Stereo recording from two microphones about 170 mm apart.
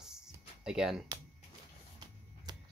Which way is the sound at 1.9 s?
25° right (ahead or behind).